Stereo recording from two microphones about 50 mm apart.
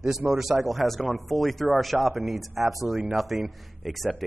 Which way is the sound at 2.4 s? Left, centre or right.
Right.